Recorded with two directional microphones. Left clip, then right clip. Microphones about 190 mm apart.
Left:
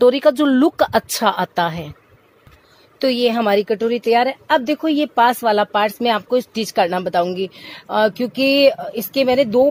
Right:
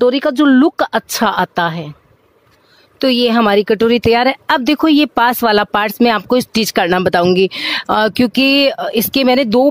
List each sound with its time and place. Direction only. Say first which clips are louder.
0.0 s speech: right 1 dB; 20° right (ahead or behind)
3.0 s a woman's voice: right 4 dB; 30° right (ahead or behind); by 9.7 s 50° right (ahead or behind)